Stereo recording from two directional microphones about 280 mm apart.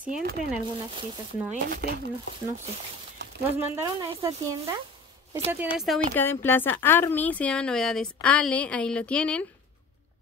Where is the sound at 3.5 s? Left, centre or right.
Centre.